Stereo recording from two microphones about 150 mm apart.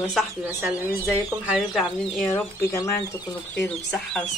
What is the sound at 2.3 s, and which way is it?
Speech, 20° left (ahead or behind).